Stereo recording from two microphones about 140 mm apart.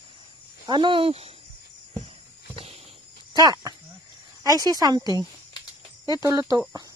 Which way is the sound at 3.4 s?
25° right (ahead or behind).